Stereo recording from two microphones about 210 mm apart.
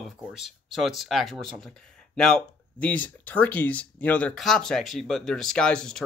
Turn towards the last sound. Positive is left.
turn(degrees=5)  # may be behind; listen again after turning